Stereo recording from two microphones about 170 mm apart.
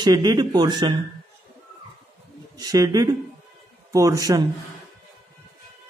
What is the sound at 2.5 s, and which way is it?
A man's voice, 20° right (ahead or behind).